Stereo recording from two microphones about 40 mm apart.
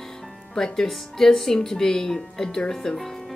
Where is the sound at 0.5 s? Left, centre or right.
Centre.